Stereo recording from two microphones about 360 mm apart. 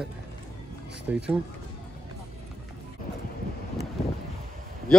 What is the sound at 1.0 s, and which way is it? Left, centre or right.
Speech, centre.